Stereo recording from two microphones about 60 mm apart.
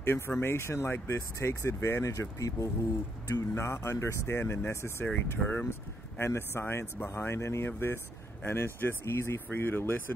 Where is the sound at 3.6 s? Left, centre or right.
Left.